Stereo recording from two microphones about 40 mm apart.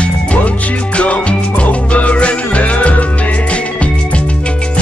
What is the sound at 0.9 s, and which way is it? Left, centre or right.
Music, left.